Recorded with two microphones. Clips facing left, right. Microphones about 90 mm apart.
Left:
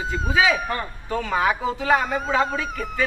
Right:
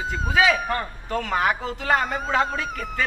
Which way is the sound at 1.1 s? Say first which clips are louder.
Left 1 dB; 65° right (ahead or behind).